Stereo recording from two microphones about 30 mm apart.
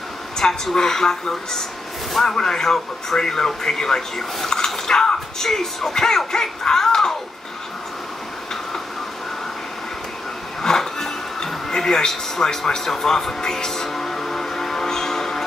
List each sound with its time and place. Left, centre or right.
0.4 s a woman's voice: left
0.7 s speech: centre
10.6 s music: centre
12.8 s speech: centre
13.7 s music: centre